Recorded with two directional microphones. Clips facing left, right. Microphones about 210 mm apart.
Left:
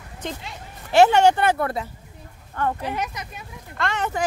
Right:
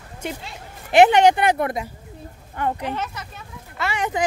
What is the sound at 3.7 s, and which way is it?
Speech, 10° right (ahead or behind).